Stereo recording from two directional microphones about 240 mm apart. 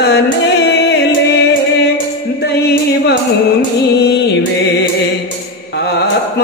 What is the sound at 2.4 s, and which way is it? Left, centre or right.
Music, left.